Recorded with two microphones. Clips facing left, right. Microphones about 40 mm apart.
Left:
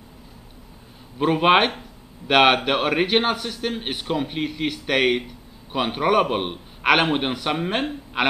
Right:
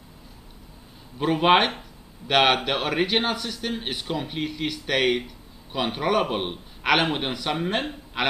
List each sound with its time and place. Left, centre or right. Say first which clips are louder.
1.1 s a man's voice: left 2 dB; centre